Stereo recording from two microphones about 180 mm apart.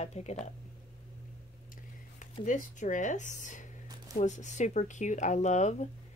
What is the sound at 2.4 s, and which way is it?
A woman's voice, 45° left (ahead or behind).